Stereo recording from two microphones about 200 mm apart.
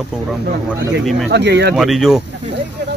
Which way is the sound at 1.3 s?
60° right (ahead or behind).